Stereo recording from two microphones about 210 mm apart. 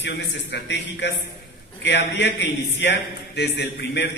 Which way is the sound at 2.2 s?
55° left (ahead or behind).